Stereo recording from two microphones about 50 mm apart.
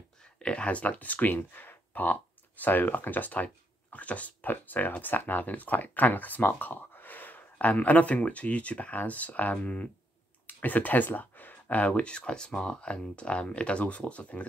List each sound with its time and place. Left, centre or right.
0.2 s speech: centre
10.4 s a sound: left
11.7 s speech: left